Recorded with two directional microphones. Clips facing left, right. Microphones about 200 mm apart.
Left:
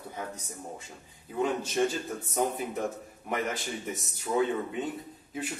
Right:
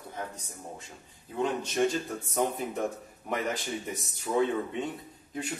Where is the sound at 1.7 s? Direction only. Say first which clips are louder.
Right 1 dB; centre (ahead or behind).